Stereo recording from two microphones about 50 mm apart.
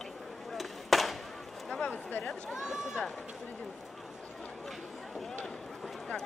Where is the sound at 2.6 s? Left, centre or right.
Centre.